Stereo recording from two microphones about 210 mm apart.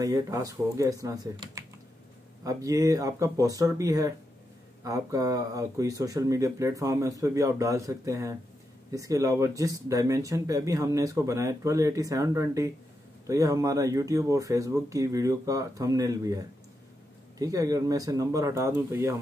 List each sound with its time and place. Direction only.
0.0 s speech: 15° right (ahead or behind)